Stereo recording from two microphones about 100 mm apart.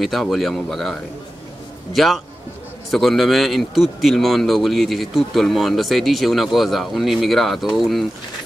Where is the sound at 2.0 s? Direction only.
Centre (ahead or behind).